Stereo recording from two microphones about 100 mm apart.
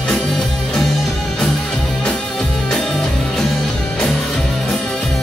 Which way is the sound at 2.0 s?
5° left (ahead or behind).